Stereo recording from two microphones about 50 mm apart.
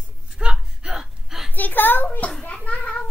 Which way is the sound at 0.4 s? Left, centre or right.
Right.